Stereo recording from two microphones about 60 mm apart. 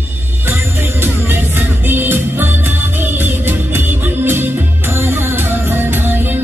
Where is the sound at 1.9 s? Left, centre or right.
Right.